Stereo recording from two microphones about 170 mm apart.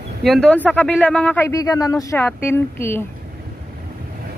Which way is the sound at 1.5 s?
20° left (ahead or behind).